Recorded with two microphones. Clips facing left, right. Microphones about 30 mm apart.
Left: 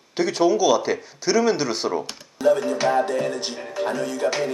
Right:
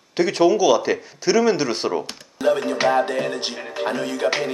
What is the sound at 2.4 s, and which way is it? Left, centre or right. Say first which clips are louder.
Music: even; right.